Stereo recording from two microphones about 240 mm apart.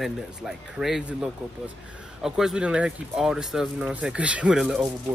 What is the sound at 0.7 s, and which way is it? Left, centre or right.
Speech, centre.